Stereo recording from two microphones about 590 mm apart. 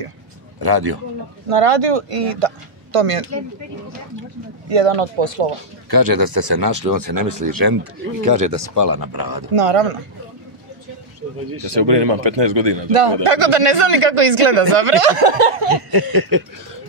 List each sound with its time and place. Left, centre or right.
0.6 s speech: right
1.5 s speech: right
4.6 s speech: right
5.9 s speech: right
9.5 s speech: right
11.6 s a man's voice: right
15.9 s speech: right